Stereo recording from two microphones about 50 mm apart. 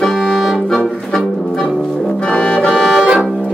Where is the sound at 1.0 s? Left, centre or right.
Centre.